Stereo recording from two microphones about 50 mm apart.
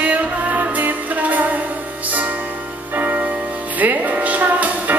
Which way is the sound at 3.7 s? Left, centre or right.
Right.